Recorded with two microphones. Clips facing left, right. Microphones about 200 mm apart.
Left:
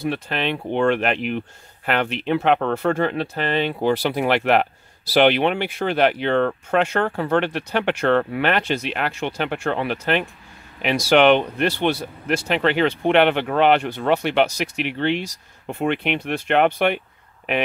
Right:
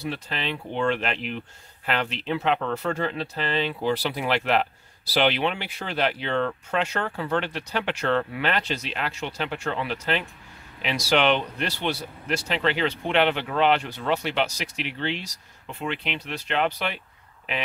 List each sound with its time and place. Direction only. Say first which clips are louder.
0.0 s speech: left 7 dB; 60° left (ahead or behind)